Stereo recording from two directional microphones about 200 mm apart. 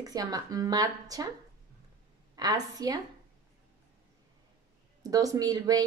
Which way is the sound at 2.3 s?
20° right (ahead or behind).